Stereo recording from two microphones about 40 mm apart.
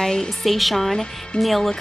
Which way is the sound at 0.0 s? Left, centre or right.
Centre.